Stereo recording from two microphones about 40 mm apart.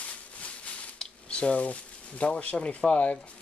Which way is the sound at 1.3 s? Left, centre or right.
Left.